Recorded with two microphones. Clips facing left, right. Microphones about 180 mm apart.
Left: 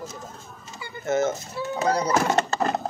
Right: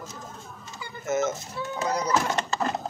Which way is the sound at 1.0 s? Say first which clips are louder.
Left 3 dB; 30° left (ahead or behind).